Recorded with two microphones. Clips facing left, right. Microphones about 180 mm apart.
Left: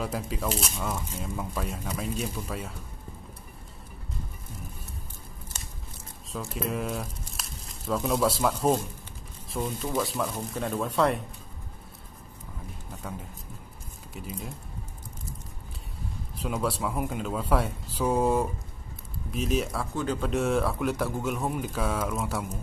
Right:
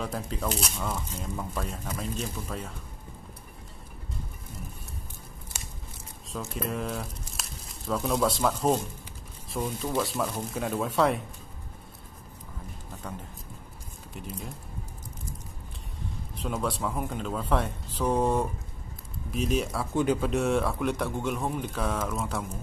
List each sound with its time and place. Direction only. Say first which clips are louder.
0.0 s speech: left 1 dB; 5° left (ahead or behind)
6.5 s speech: left 1 dB; centre (ahead or behind)
14.1 s speech: left 1 dB; centre (ahead or behind)
16.4 s speech: left 1 dB; 5° left (ahead or behind)
19.9 s speech: right 4 dB; 15° right (ahead or behind)
20.2 s speech: even; centre (ahead or behind)